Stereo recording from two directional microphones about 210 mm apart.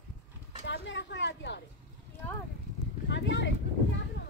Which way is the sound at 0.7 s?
60° left (ahead or behind).